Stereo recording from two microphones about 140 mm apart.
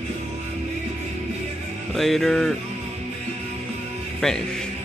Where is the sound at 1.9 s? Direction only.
Centre (ahead or behind).